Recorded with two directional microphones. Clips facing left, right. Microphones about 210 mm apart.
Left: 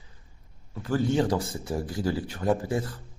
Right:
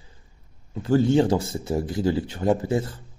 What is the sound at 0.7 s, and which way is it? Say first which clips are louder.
Speech: right 6 dB; 25° right (ahead or behind).